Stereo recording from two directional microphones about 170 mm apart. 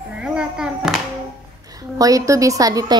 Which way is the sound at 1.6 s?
20° right (ahead or behind).